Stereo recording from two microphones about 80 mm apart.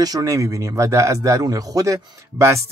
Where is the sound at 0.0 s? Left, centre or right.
Right.